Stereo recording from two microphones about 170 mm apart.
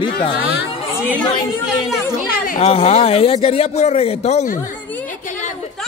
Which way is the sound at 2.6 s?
40° left (ahead or behind).